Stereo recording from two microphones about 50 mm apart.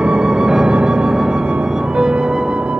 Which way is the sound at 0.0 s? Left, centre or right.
Centre.